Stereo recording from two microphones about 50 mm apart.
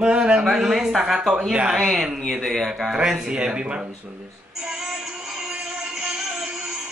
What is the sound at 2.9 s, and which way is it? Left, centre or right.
Speech, centre.